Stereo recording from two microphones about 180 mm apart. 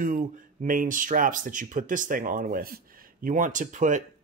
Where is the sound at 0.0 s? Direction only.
50° right (ahead or behind).